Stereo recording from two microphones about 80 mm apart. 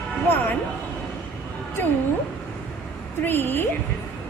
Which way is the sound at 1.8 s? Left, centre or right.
Left.